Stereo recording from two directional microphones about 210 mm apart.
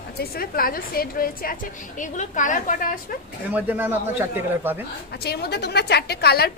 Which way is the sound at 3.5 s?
5° right (ahead or behind).